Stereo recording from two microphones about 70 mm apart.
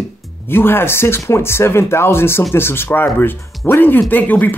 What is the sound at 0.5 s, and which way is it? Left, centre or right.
Speech, left.